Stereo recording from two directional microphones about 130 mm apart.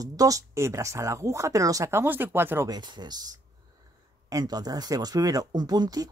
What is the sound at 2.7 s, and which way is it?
Speech, 35° right (ahead or behind).